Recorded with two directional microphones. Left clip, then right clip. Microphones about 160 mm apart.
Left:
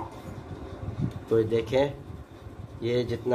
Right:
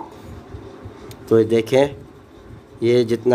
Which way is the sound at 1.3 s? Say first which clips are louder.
Right 9 dB; 75° right (ahead or behind).